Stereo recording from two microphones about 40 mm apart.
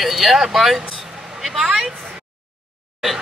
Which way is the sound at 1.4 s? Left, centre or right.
Centre.